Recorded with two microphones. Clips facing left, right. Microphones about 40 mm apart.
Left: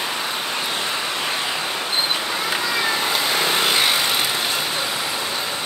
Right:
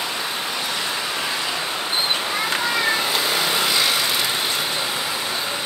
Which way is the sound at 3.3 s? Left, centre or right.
Left.